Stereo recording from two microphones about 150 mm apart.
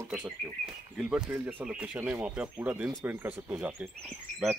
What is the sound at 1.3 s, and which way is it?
Speech, 15° right (ahead or behind).